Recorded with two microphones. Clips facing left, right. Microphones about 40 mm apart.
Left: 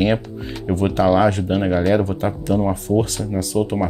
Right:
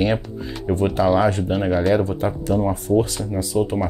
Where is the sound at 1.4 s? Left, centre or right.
Left.